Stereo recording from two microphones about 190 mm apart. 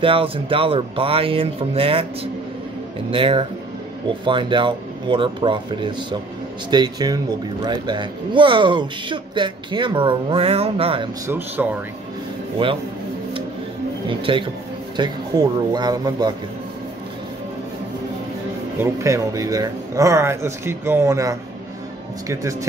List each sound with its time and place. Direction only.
0.0 s speech: 30° right (ahead or behind)
3.1 s speech: 25° right (ahead or behind)
11.2 s speech: 10° right (ahead or behind)
12.6 s speech: 25° right (ahead or behind)
14.0 s speech: 25° right (ahead or behind)
18.8 s speech: 15° right (ahead or behind)